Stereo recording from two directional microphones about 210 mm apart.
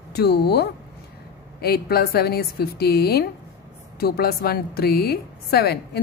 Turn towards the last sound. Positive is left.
turn(degrees=50)  # may be behind; listen again after turning